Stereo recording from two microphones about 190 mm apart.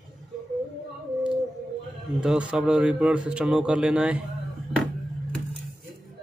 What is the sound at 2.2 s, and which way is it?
Speech, 5° right (ahead or behind).